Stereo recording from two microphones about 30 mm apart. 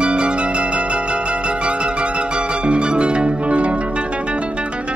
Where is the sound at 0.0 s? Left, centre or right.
Right.